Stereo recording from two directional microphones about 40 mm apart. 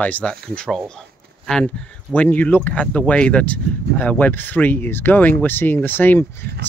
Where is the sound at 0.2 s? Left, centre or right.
Left.